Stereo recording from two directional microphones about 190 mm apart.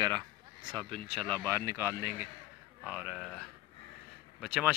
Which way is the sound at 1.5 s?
15° right (ahead or behind).